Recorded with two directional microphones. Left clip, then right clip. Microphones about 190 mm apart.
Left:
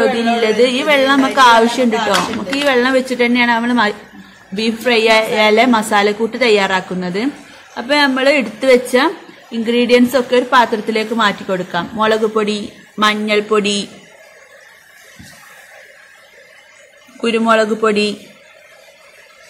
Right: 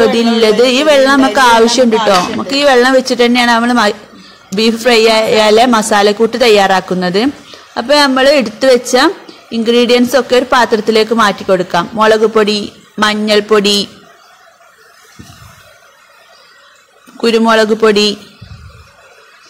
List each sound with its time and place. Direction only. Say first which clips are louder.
0.0 s a woman's voice: right 5 dB; 45° right (ahead or behind)
17.2 s a woman's voice: right 4 dB; 45° right (ahead or behind)